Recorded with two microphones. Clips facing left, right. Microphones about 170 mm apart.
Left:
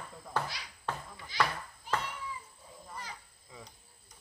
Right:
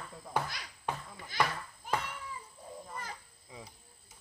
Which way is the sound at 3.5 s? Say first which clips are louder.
Right 2 dB; 15° right (ahead or behind).